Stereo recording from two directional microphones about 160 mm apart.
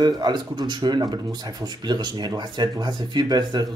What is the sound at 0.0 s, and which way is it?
Speech, 25° right (ahead or behind).